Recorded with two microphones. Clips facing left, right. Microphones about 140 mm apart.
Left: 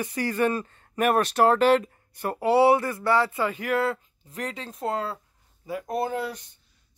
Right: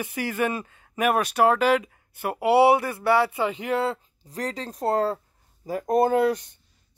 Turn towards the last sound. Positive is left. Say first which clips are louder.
# right 9 dB
turn(degrees=-70)  # may be behind; listen again after turning